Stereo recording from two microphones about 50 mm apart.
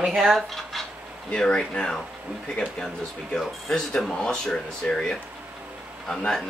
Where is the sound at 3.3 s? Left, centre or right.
Centre.